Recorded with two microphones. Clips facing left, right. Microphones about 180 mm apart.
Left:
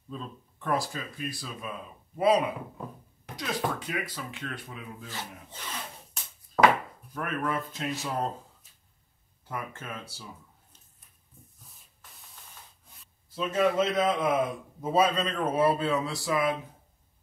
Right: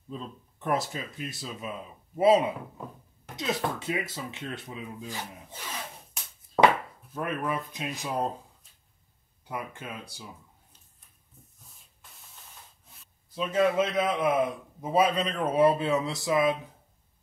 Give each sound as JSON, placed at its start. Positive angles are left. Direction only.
{"t": 0.1, "sound": "speech", "side_deg": -20}
{"t": 7.2, "sound": "speech", "side_deg": -15}
{"t": 9.5, "sound": "speech", "side_deg": -15}
{"t": 13.3, "sound": "speech", "side_deg": -10}